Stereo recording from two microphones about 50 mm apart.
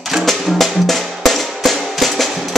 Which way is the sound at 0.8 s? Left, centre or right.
Centre.